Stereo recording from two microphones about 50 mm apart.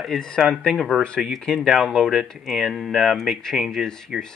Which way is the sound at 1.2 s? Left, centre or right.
Centre.